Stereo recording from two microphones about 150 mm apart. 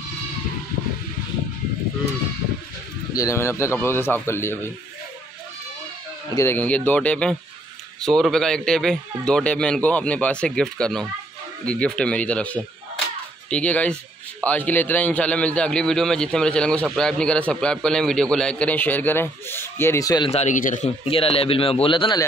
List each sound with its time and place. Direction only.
3.2 s a man's voice: 20° left (ahead or behind)
6.3 s a man's voice: 15° left (ahead or behind)
20.2 s speech: 50° left (ahead or behind)
21.1 s a man's voice: 40° left (ahead or behind)